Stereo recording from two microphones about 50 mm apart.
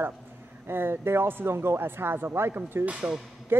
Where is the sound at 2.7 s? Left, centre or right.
Right.